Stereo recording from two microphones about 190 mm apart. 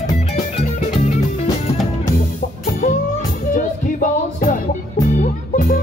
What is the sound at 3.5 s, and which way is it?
Music, 40° left (ahead or behind).